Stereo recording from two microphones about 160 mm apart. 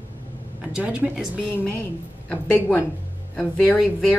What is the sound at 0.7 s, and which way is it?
Speech, 10° right (ahead or behind).